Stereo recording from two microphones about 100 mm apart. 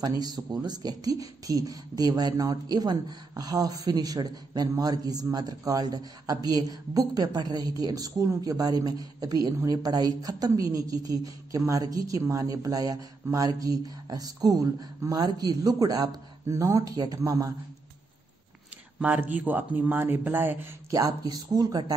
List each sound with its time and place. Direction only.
0.0 s speech: 40° right (ahead or behind)
18.9 s speech: 15° right (ahead or behind)
20.9 s speech: 40° right (ahead or behind)